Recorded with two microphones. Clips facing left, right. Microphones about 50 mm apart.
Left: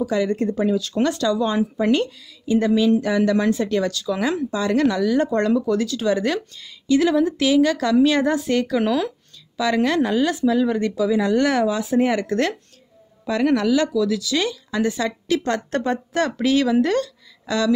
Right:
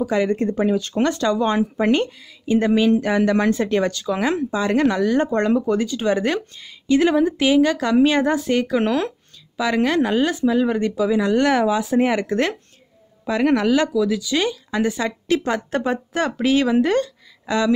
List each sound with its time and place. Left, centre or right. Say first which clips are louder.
0.0 s speech: right 1 dB; right
1.9 s speech: right 1 dB; right
3.6 s a woman's voice: right 1 dB; right